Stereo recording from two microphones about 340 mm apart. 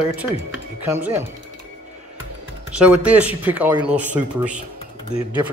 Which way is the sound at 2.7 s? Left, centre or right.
Centre.